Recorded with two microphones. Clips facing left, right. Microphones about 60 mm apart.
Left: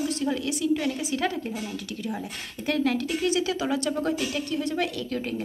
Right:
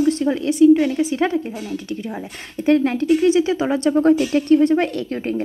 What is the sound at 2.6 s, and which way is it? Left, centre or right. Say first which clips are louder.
A woman's voice: right 10 dB; right.